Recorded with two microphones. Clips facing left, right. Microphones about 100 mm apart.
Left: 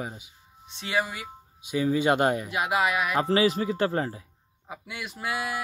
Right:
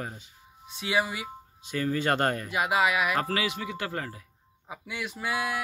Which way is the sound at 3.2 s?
30° left (ahead or behind).